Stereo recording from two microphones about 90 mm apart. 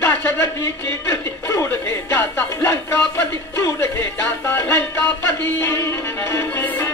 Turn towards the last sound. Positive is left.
turn(degrees=20)  # may be behind; listen again after turning